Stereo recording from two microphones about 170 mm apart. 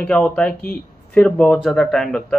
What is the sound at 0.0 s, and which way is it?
Speech, 5° left (ahead or behind).